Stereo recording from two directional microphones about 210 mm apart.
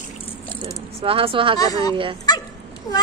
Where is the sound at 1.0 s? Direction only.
25° right (ahead or behind).